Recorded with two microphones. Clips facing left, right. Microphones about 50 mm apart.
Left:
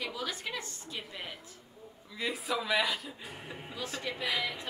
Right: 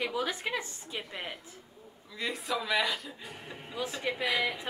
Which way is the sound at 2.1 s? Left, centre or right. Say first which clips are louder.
Even; centre.